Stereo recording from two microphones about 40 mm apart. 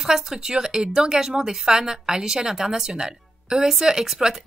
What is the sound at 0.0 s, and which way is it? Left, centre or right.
Speech, centre.